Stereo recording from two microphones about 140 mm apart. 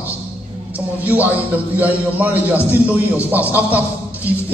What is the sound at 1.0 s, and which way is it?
A man's voice, 10° right (ahead or behind).